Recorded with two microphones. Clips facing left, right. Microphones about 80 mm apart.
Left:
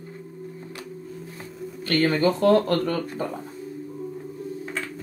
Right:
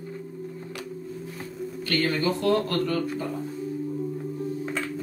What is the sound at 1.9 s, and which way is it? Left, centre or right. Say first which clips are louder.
A man's voice: left 4 dB; left.